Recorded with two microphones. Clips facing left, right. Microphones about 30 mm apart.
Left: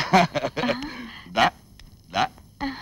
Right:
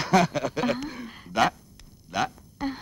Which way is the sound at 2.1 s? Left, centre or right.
Left.